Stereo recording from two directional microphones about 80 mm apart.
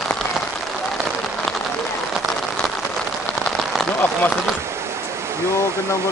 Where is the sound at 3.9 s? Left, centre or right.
Left.